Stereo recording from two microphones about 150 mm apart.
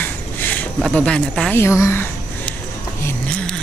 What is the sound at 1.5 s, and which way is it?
Speech, 20° left (ahead or behind).